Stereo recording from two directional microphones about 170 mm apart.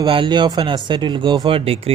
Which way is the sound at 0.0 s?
30° right (ahead or behind).